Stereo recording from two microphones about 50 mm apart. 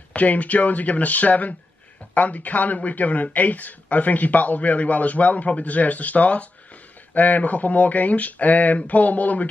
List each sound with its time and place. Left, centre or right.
0.1 s speech: left